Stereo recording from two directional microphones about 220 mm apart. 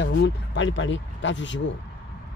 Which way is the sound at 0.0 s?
55° left (ahead or behind).